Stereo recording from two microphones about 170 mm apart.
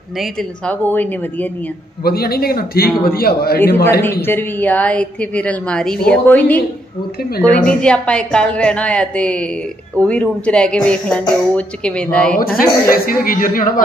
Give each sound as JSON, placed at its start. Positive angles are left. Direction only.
{"t": 0.2, "sound": "speech", "side_deg": 5}
{"t": 2.0, "sound": "speech", "side_deg": 65}
{"t": 4.2, "sound": "speech", "side_deg": 10}
{"t": 12.4, "sound": "speech", "side_deg": 55}